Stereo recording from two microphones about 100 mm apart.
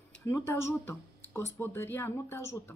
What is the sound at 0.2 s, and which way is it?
Speech, 25° left (ahead or behind).